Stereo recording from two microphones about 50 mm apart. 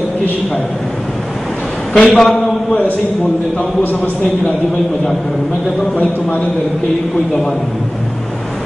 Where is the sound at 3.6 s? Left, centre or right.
Left.